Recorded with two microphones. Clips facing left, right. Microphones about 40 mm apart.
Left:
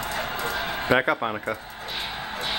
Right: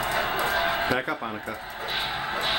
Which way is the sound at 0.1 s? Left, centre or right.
Centre.